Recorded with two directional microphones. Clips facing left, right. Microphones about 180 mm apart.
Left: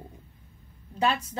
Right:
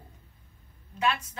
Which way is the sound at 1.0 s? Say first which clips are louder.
Left 2 dB; 35° left (ahead or behind).